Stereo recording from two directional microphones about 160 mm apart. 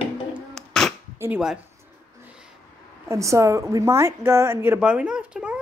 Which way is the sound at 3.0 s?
20° right (ahead or behind).